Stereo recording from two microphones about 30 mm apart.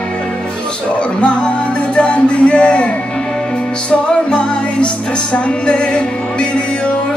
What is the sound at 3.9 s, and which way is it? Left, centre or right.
Music, left.